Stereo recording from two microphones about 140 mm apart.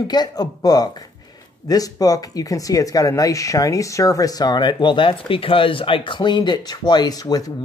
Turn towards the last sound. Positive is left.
turn(degrees=25)  # may be behind; listen again after turning